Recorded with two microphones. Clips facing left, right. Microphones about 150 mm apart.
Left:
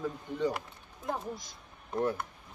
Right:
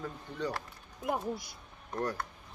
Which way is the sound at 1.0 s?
15° right (ahead or behind).